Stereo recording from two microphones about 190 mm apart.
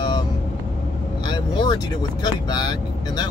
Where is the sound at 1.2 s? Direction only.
20° left (ahead or behind).